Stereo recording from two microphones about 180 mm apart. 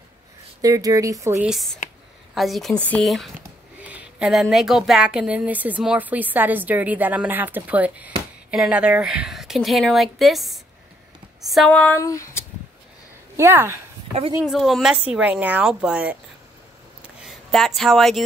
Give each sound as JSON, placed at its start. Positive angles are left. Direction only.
{"t": 0.6, "sound": "speech", "side_deg": -20}
{"t": 1.8, "sound": "a sound", "side_deg": 45}
{"t": 2.3, "sound": "a woman's voice", "side_deg": 0}
{"t": 12.0, "sound": "speech", "side_deg": 15}
{"t": 13.4, "sound": "a woman's voice", "side_deg": -15}
{"t": 14.4, "sound": "a woman's voice", "side_deg": 0}
{"t": 17.2, "sound": "speech", "side_deg": 0}